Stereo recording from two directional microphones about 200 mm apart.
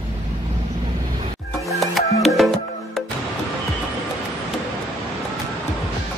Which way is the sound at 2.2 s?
Centre (ahead or behind).